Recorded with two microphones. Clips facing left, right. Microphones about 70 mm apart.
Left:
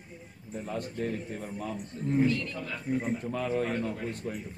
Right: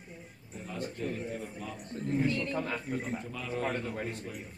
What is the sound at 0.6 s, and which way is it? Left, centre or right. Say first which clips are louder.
A man's voice: left 3 dB; left.